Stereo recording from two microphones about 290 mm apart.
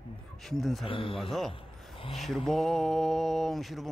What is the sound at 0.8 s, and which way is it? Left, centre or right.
Speech, centre.